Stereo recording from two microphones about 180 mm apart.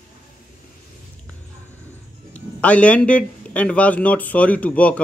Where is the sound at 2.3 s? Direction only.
5° left (ahead or behind).